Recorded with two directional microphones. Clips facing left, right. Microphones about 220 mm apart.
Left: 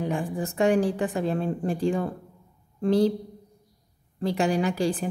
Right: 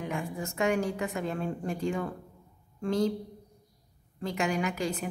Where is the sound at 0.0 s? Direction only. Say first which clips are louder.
Left 6 dB; 35° left (ahead or behind).